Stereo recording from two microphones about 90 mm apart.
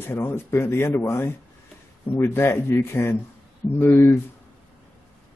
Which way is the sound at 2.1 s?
25° left (ahead or behind).